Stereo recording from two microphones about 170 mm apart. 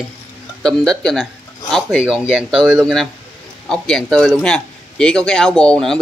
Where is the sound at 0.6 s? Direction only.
5° left (ahead or behind).